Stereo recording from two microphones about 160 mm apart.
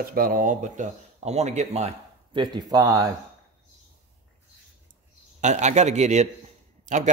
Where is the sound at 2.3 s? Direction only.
30° right (ahead or behind).